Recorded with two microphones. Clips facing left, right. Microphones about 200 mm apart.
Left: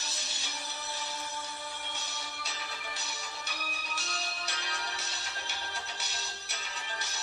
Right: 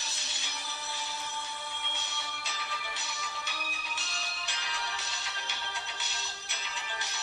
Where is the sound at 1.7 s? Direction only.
40° left (ahead or behind).